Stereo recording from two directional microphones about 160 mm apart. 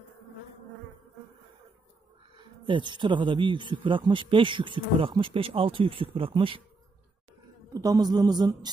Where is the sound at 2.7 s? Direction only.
30° right (ahead or behind).